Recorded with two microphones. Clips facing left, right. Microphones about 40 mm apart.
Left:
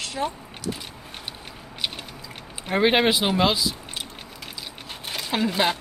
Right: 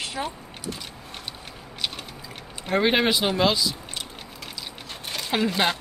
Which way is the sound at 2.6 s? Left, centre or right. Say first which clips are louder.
Left 2 dB; centre.